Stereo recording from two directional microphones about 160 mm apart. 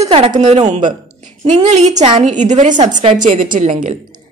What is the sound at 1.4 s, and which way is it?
A woman's voice, 45° right (ahead or behind).